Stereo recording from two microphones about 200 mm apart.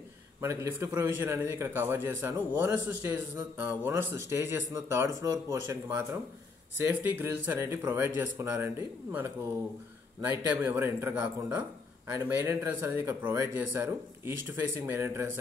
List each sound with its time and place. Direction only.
0.4 s a man's voice: 15° right (ahead or behind)
10.6 s a man's voice: 10° right (ahead or behind)